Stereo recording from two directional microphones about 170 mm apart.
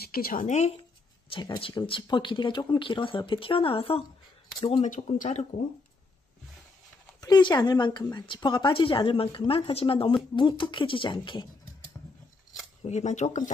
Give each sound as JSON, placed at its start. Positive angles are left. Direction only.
{"t": 0.0, "sound": "speech", "side_deg": 60}
{"t": 1.3, "sound": "speech", "side_deg": 30}
{"t": 4.8, "sound": "speech", "side_deg": 50}
{"t": 7.2, "sound": "speech", "side_deg": 25}
{"t": 12.8, "sound": "speech", "side_deg": 45}